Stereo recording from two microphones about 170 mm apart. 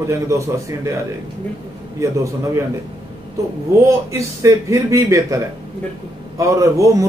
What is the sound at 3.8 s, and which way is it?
A man's voice, 20° right (ahead or behind).